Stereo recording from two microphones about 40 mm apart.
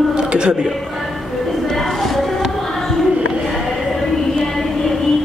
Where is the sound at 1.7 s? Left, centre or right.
Centre.